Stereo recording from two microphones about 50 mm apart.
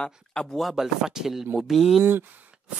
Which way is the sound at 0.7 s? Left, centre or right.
Centre.